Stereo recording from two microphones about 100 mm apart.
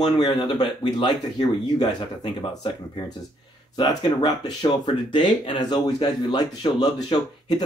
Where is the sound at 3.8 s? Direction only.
45° left (ahead or behind).